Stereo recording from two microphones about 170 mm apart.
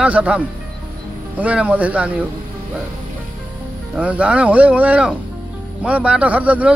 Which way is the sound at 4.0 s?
10° right (ahead or behind).